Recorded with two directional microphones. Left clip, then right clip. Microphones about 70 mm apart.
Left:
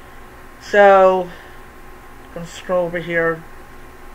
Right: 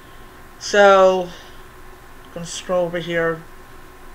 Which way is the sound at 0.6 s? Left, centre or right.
Right.